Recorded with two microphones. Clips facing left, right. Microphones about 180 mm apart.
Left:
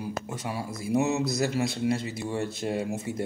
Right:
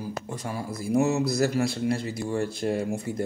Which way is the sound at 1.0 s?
20° left (ahead or behind).